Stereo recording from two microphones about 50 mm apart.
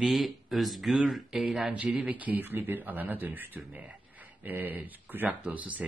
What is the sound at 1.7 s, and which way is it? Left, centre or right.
A man's voice, right.